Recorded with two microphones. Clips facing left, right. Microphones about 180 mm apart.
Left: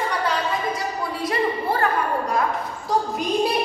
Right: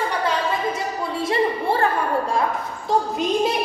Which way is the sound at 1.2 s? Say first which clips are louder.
Right 2 dB; 25° right (ahead or behind).